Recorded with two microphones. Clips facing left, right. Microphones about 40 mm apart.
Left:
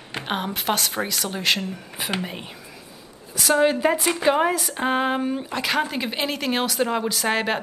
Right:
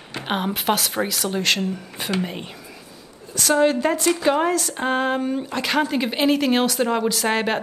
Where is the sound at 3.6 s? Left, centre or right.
Centre.